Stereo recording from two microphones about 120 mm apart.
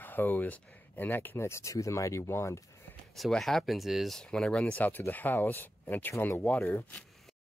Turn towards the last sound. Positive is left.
turn(degrees=15)  # may be behind; listen again after turning